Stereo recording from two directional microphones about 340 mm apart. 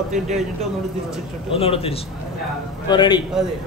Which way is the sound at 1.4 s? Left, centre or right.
Centre.